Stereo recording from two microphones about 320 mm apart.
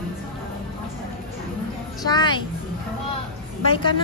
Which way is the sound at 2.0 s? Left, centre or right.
Centre.